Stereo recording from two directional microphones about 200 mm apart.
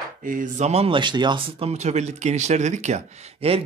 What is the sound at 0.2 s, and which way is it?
Speech, 40° right (ahead or behind).